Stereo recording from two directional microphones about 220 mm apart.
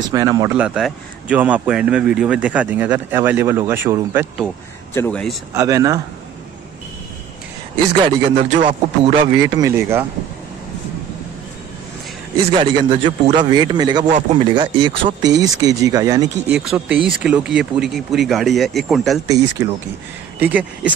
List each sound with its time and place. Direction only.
0.1 s a man's voice: 15° right (ahead or behind)
0.6 s a man's voice: 5° right (ahead or behind)
4.9 s speech: 5° left (ahead or behind)
5.5 s a man's voice: 15° right (ahead or behind)
8.0 s a man's voice: 30° right (ahead or behind)
9.5 s a man's voice: 15° right (ahead or behind)
12.5 s a man's voice: 20° right (ahead or behind)
14.0 s speech: 35° right (ahead or behind)
14.5 s a man's voice: 20° right (ahead or behind)
16.5 s speech: 5° right (ahead or behind)
20.3 s a man's voice: 5° right (ahead or behind)